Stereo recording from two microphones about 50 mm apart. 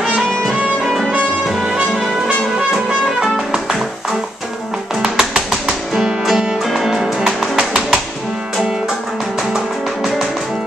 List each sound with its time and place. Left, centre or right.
3.2 s music: centre
5.0 s music: centre